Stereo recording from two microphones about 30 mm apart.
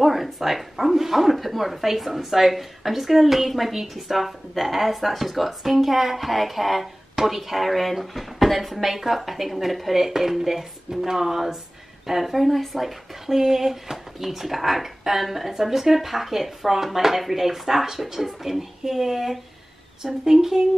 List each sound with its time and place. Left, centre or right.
0.0 s speech: centre
20.0 s speech: right